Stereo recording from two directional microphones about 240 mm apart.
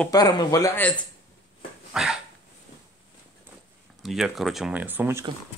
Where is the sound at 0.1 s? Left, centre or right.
Centre.